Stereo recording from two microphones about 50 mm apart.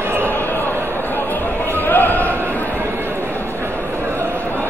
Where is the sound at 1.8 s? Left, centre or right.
Left.